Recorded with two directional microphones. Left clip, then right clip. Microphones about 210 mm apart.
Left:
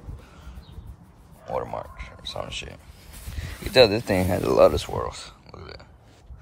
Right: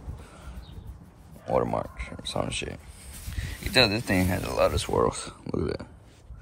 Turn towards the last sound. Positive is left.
turn(degrees=0)  # may be behind; listen again after turning